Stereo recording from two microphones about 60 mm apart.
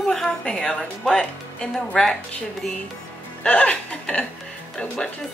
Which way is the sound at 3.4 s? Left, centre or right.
Left.